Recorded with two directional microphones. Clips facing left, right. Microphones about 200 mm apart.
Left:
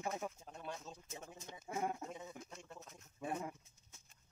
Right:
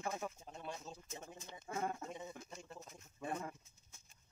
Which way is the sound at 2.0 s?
Centre (ahead or behind).